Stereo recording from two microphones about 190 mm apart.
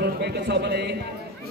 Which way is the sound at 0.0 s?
60° right (ahead or behind).